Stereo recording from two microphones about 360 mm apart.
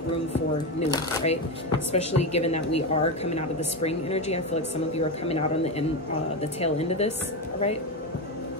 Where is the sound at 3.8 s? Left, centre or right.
Centre.